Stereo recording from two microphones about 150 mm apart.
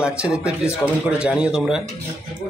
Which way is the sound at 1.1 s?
5° right (ahead or behind).